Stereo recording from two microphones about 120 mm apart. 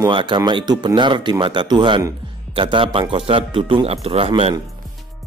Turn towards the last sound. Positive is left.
turn(degrees=-55)  # may be behind; listen again after turning